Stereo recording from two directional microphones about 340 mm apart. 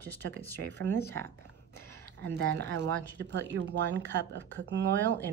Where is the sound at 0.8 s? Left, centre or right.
Centre.